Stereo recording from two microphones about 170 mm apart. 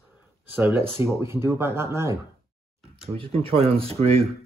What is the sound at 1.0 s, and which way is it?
Speech, 15° right (ahead or behind).